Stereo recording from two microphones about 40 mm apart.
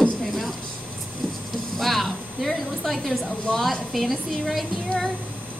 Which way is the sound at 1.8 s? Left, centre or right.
Centre.